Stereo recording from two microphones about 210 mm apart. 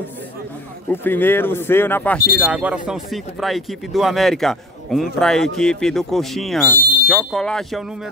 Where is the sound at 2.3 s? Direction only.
5° right (ahead or behind).